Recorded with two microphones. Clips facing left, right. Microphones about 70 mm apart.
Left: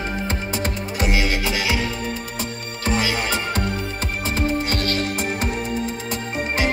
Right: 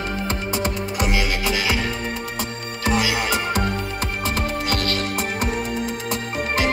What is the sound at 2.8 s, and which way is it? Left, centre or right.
Music, centre.